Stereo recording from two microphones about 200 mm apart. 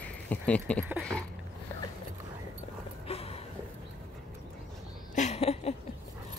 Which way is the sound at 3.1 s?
30° left (ahead or behind).